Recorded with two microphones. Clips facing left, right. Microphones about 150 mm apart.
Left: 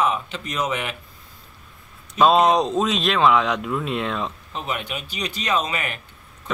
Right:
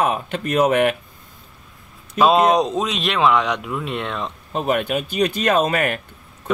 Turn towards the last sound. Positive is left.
turn(degrees=-50)  # may be behind; listen again after turning